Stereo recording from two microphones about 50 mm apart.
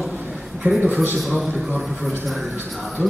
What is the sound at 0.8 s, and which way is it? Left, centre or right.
Speech, right.